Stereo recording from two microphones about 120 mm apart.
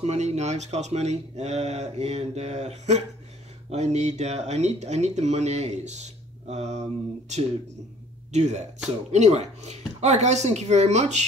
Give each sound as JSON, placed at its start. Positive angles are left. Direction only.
{"t": 0.0, "sound": "speech", "side_deg": -70}
{"t": 8.3, "sound": "speech", "side_deg": -70}